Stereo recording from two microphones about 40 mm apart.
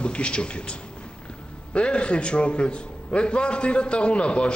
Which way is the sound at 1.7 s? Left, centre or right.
Left.